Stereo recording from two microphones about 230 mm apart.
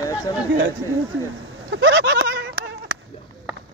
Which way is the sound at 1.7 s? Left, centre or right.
Right.